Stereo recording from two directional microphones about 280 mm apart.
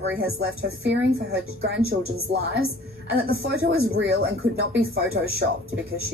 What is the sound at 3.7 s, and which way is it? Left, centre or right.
A woman's voice, right.